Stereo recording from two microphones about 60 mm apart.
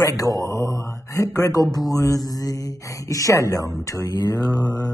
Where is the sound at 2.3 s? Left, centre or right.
Left.